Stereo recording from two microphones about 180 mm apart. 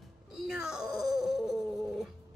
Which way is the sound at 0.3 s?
5° right (ahead or behind).